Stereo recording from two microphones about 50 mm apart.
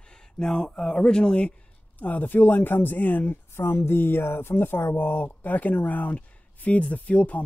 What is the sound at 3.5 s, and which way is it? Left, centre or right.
Speech, left.